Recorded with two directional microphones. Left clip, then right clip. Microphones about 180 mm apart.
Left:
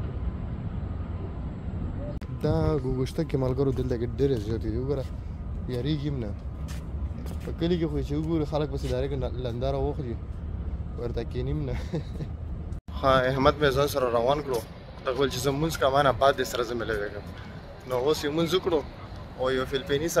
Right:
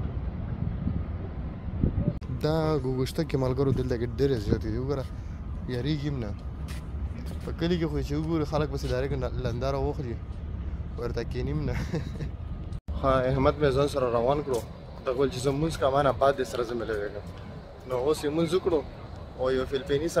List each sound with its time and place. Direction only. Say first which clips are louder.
2.4 s a man's voice: even; centre (ahead or behind)
7.5 s a man's voice: left 1 dB; centre (ahead or behind)